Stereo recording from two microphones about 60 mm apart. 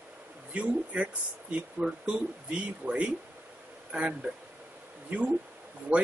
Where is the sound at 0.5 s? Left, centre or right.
Right.